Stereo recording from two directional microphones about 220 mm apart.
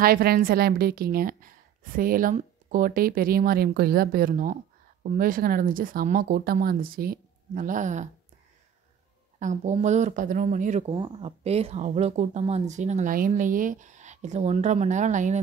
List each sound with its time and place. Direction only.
0.0 s a woman's voice: 40° right (ahead or behind)
9.4 s a woman's voice: 35° right (ahead or behind)